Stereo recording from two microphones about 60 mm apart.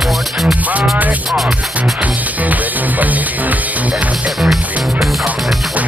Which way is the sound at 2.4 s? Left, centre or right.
Right.